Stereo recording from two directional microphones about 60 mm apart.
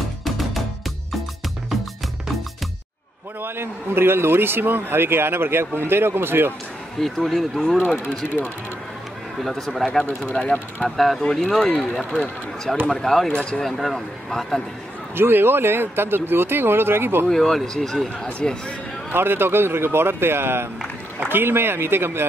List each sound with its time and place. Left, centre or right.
3.4 s a man's voice: right
7.0 s speech: centre
9.4 s speech: centre
10.2 s speech: left
11.0 s speech: centre
15.1 s a man's voice: right
17.3 s speech: centre
19.1 s a man's voice: right